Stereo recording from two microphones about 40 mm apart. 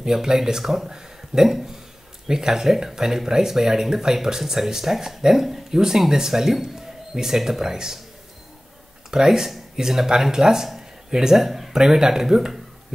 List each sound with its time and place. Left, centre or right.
0.0 s speech: centre
9.1 s speech: centre